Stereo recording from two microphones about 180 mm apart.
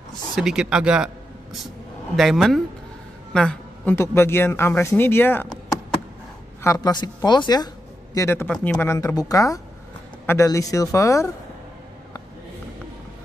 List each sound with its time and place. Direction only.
0.1 s speech: 5° right (ahead or behind)
6.6 s speech: 20° left (ahead or behind)
8.5 s speech: 5° left (ahead or behind)
8.8 s speech: 15° left (ahead or behind)